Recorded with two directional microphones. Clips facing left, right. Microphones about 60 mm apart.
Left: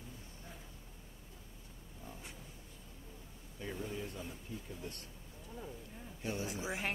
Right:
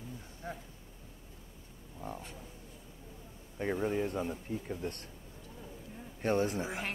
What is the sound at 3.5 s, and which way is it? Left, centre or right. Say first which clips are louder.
Speech: right 10 dB; right.